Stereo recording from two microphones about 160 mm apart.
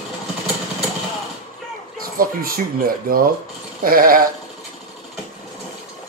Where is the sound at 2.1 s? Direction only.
65° right (ahead or behind).